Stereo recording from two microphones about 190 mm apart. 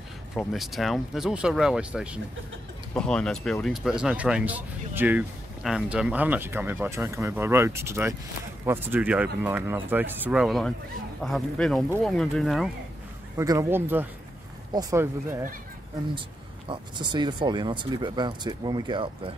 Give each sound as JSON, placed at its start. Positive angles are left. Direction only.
{"t": 0.3, "sound": "speech", "side_deg": 0}
{"t": 2.9, "sound": "speech", "side_deg": 5}
{"t": 13.4, "sound": "speech", "side_deg": -15}
{"t": 16.6, "sound": "speech", "side_deg": -25}